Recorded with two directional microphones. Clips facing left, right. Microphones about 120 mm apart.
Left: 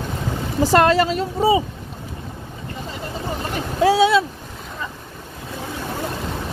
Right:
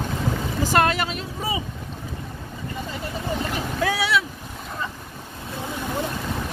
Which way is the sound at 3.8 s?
25° left (ahead or behind).